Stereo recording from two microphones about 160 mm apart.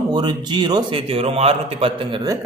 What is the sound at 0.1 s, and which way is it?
A man's voice, 25° right (ahead or behind).